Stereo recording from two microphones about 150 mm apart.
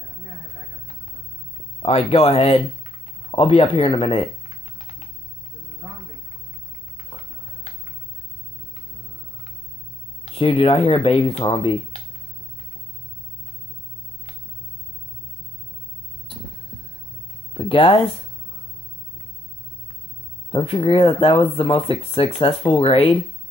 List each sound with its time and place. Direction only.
1.8 s speech: 40° left (ahead or behind)
10.2 s speech: 40° left (ahead or behind)
17.6 s speech: 35° left (ahead or behind)
20.5 s speech: 40° left (ahead or behind)